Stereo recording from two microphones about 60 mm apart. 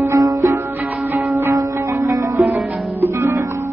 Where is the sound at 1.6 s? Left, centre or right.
Right.